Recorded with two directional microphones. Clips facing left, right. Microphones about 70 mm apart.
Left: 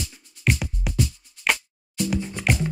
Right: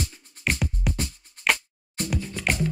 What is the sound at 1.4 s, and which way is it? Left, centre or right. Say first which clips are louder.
Music: even; right.